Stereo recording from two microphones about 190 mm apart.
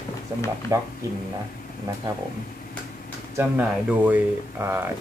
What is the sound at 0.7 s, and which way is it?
Speech, 15° right (ahead or behind).